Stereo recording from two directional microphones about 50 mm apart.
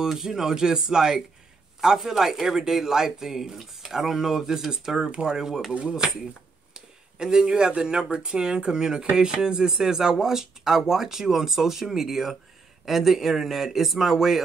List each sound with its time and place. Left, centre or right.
0.0 s speech: centre
7.2 s speech: centre